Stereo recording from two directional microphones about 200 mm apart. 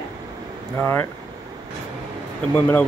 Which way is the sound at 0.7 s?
10° left (ahead or behind).